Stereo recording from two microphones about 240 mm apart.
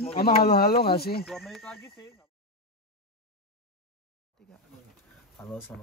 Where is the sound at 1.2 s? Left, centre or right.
Centre.